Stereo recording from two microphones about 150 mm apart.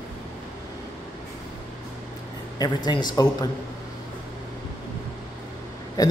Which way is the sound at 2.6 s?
30° left (ahead or behind).